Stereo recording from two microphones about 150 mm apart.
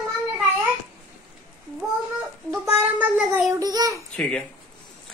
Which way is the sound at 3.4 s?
25° right (ahead or behind).